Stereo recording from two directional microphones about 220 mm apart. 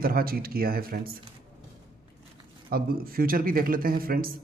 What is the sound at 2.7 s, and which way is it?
A man's voice, 40° right (ahead or behind).